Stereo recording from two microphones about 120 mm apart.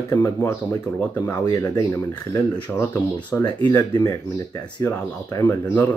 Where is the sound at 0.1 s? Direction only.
25° left (ahead or behind).